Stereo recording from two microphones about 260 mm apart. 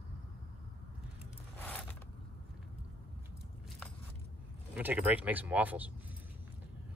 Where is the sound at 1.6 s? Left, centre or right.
Centre.